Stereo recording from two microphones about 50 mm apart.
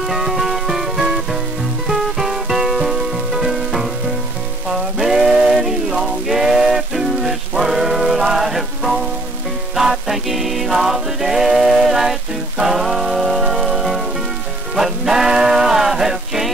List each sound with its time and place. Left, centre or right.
0.0 s music: centre
4.6 s a sound: centre
9.8 s music: centre